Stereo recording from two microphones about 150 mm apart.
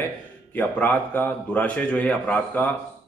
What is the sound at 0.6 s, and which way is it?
A man's voice, 10° left (ahead or behind).